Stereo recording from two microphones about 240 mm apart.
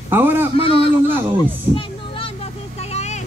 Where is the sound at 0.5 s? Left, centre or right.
Left.